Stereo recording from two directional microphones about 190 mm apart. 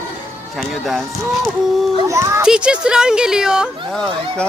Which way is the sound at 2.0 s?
15° right (ahead or behind).